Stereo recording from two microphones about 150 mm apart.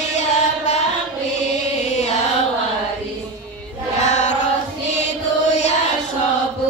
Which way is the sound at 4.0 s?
50° left (ahead or behind).